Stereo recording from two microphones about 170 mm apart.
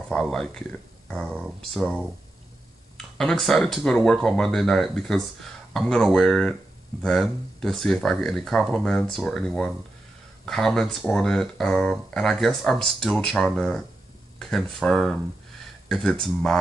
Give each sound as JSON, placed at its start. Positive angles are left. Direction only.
{"t": 0.1, "sound": "speech", "side_deg": 0}
{"t": 3.2, "sound": "speech", "side_deg": 0}